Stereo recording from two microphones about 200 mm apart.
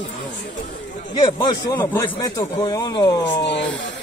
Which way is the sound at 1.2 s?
20° left (ahead or behind).